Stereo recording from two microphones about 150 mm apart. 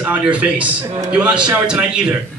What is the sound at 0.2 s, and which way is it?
A man's voice, 10° right (ahead or behind).